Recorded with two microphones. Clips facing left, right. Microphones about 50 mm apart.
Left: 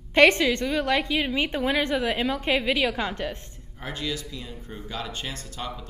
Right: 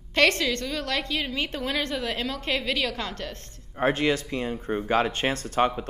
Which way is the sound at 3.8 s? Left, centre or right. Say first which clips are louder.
Right 9 dB; right.